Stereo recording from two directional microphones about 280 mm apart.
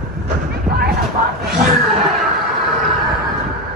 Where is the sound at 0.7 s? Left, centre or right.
Right.